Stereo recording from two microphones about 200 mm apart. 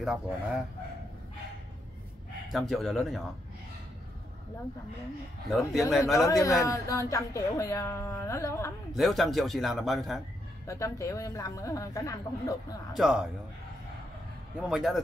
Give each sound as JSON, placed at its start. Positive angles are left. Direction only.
{"t": 0.0, "sound": "a man's voice", "side_deg": -5}
{"t": 2.7, "sound": "a man's voice", "side_deg": 0}
{"t": 5.7, "sound": "a man's voice", "side_deg": 0}
{"t": 6.1, "sound": "speech", "side_deg": 15}
{"t": 8.9, "sound": "a man's voice", "side_deg": 0}
{"t": 10.7, "sound": "speech", "side_deg": 15}
{"t": 12.9, "sound": "a man's voice", "side_deg": -5}
{"t": 14.7, "sound": "a man's voice", "side_deg": 0}